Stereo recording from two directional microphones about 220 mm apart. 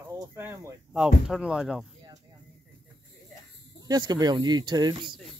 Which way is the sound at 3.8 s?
20° right (ahead or behind).